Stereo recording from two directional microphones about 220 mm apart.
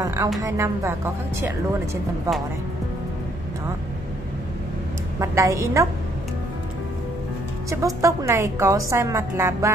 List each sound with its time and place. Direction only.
0.0 s a woman's voice: 15° right (ahead or behind)
5.2 s a woman's voice: 15° right (ahead or behind)
7.7 s a woman's voice: 15° right (ahead or behind)